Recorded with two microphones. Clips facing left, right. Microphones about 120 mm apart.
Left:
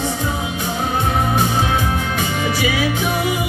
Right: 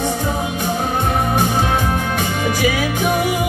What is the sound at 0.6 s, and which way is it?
Music, 45° right (ahead or behind).